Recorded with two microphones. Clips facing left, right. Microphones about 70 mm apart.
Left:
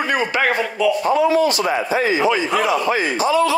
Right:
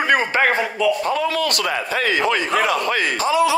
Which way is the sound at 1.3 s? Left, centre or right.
Right.